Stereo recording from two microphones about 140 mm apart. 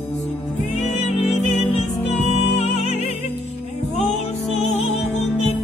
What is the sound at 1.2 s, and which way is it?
Music, 55° left (ahead or behind).